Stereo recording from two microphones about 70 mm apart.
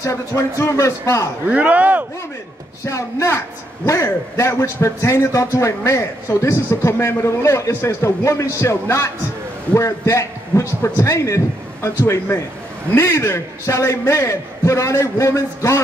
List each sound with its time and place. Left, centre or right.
0.0 s a man's voice: left
1.5 s speech: centre
2.8 s a man's voice: left